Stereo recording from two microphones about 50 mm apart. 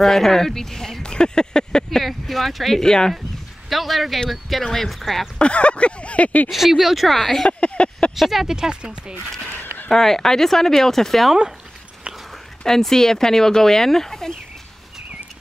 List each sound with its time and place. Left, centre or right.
0.0 s speech: centre
2.8 s speech: centre
3.6 s speech: centre
5.4 s speech: left
6.5 s speech: centre
7.4 s speech: left
8.2 s speech: centre
9.8 s speech: centre
12.6 s speech: centre